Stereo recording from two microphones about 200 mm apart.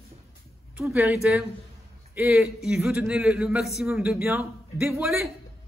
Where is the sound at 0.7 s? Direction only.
10° right (ahead or behind).